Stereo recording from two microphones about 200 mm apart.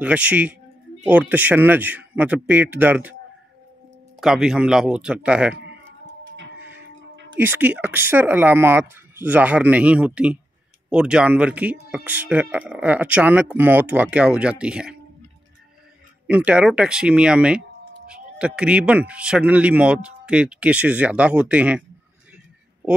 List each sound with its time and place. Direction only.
0.0 s speech: 5° right (ahead or behind)
4.2 s speech: centre (ahead or behind)
6.2 s music: 65° right (ahead or behind)
7.3 s speech: 10° right (ahead or behind)
16.3 s speech: 5° right (ahead or behind)